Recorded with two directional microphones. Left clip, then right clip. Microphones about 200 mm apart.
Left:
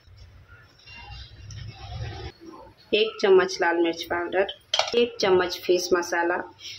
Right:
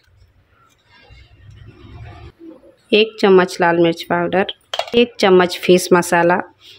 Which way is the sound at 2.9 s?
50° right (ahead or behind).